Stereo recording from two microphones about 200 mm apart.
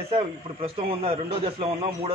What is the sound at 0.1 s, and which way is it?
A man's voice, 25° right (ahead or behind).